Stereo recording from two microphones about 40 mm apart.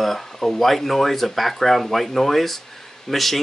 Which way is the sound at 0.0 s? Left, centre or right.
Centre.